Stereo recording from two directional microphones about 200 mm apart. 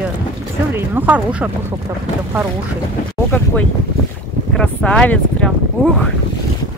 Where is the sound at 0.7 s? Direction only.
10° right (ahead or behind).